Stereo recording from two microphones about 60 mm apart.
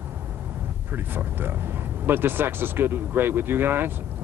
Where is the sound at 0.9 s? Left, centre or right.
Right.